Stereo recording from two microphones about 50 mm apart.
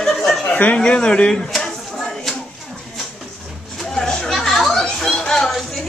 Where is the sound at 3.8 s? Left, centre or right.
Centre.